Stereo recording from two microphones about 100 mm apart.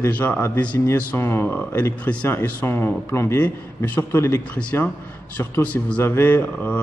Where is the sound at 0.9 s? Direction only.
20° left (ahead or behind).